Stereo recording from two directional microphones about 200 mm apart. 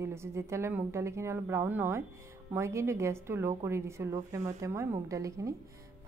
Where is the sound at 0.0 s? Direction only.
15° right (ahead or behind).